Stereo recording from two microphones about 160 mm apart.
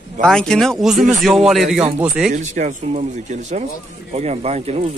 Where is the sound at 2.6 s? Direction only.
50° right (ahead or behind).